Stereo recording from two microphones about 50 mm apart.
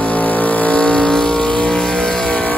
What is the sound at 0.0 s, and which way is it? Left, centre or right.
Vehicle, left.